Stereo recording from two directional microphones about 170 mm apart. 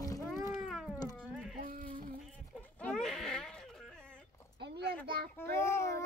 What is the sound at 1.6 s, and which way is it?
Insect, 55° right (ahead or behind).